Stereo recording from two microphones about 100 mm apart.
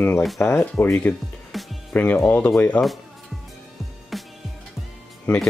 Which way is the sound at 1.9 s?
15° left (ahead or behind).